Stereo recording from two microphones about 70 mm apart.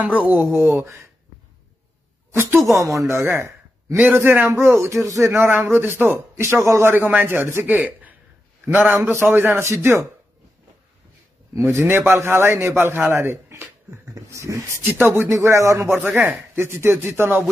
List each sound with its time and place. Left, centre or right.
0.2 s a man's voice: right
2.3 s a man's voice: right
2.7 s a man's voice: right
4.0 s a man's voice: right
7.2 s a man's voice: right
7.6 s a man's voice: right
11.5 s a man's voice: right
13.1 s a sound: right
14.1 s dog: right
14.8 s speech: right
15.2 s speech: right
15.9 s a man's voice: right